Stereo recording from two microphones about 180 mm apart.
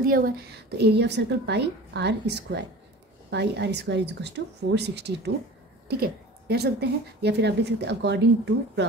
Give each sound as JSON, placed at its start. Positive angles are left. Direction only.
{"t": 0.0, "sound": "speech", "side_deg": -55}